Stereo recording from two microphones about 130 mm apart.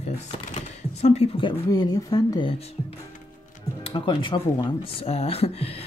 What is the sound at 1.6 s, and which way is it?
Speech, 30° left (ahead or behind).